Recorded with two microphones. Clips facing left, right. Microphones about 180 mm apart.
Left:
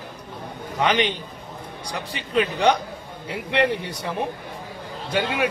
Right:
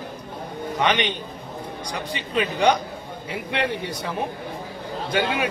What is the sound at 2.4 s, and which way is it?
Speech, 5° right (ahead or behind).